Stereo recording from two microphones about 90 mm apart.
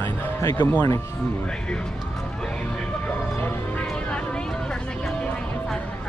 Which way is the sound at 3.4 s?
15° left (ahead or behind).